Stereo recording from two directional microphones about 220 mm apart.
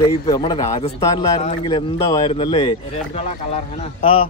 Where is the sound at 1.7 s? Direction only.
20° left (ahead or behind).